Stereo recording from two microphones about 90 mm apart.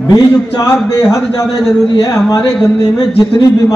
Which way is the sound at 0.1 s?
40° left (ahead or behind).